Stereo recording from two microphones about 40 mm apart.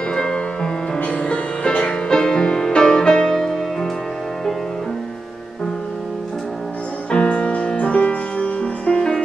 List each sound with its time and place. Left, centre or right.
0.1 s music: centre
0.9 s music: left; by 3.9 s centre
7.1 s music: left